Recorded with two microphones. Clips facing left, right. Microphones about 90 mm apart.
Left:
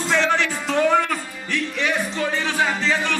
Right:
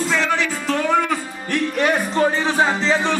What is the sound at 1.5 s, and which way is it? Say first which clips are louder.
Music: right 5 dB; 45° right (ahead or behind).